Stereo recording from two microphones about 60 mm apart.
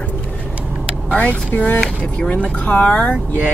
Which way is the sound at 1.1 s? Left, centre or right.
Left.